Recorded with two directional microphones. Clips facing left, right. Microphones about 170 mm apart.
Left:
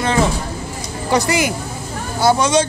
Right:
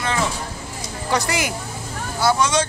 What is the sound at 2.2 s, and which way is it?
Speech, 30° left (ahead or behind).